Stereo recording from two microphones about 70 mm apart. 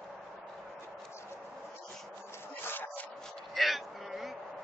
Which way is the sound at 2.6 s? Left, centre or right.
Left.